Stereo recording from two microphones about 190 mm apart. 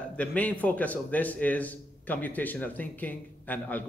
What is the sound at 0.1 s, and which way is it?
A man's voice, 5° left (ahead or behind).